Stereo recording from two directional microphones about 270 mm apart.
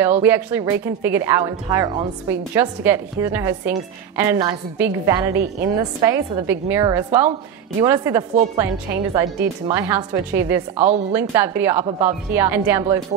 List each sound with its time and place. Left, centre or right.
0.2 s speech: centre
10.8 s speech: right
11.1 s speech: centre